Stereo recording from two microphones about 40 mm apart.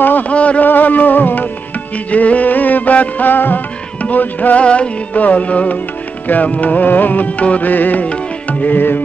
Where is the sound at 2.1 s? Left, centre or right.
Left.